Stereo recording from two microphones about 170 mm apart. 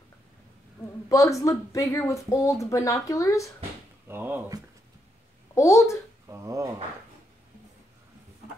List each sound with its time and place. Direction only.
1.0 s speech: 20° left (ahead or behind)
4.1 s speech: 10° right (ahead or behind)
5.5 s a child's voice: 15° left (ahead or behind)
6.2 s speech: 20° right (ahead or behind)